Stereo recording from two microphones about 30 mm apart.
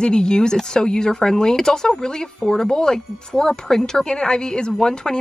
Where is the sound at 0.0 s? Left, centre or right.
Left.